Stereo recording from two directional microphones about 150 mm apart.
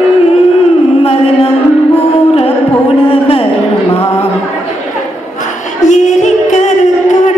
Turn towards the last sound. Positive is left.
turn(degrees=50)  # may be behind; listen again after turning